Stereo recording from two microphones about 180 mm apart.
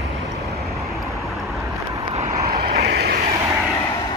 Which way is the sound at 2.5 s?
65° right (ahead or behind).